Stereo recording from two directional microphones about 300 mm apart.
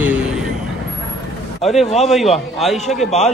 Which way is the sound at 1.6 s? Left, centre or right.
Centre.